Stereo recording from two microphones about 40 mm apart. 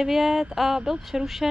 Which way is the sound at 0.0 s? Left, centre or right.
Centre.